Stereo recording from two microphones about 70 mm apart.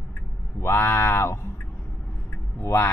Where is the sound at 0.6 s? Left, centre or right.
Left.